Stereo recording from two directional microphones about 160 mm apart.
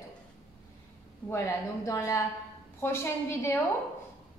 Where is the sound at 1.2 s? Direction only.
15° left (ahead or behind).